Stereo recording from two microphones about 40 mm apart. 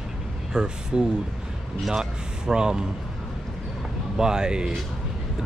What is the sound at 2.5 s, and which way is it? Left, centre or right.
Speech, centre.